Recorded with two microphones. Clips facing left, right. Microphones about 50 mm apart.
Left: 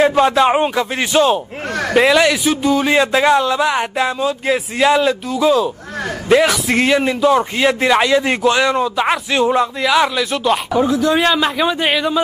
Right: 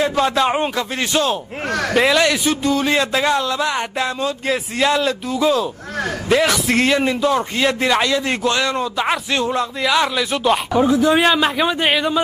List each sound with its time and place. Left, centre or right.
0.4 s a man's voice: centre